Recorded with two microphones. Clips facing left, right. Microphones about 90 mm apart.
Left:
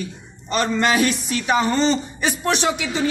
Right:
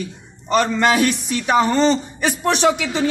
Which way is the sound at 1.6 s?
65° right (ahead or behind).